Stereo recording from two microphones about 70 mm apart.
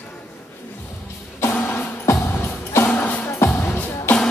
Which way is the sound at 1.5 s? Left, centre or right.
Left.